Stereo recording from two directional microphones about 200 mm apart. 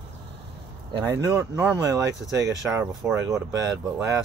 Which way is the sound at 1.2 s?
10° right (ahead or behind).